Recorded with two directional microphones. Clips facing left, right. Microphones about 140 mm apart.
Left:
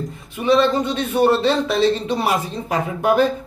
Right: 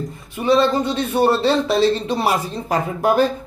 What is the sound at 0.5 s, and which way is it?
Speech, 35° right (ahead or behind).